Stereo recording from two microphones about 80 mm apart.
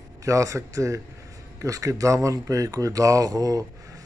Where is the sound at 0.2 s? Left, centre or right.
Right.